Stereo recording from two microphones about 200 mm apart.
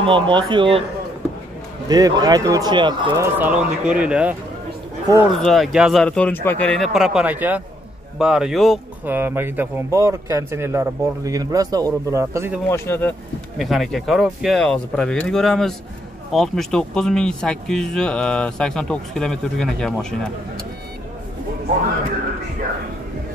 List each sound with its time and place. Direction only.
0.0 s speech: 25° right (ahead or behind)
1.9 s speech: 20° right (ahead or behind)
3.3 s speech: 5° right (ahead or behind)
5.1 s speech: 20° right (ahead or behind)
5.4 s speech: centre (ahead or behind)
12.6 s speech: 15° left (ahead or behind)
13.6 s speech: centre (ahead or behind)